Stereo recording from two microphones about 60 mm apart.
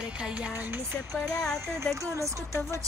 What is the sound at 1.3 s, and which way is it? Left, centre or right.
Speech, centre.